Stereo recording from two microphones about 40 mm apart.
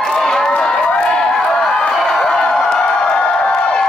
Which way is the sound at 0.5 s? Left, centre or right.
Centre.